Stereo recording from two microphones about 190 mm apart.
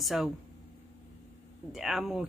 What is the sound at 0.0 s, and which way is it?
Speech, centre (ahead or behind).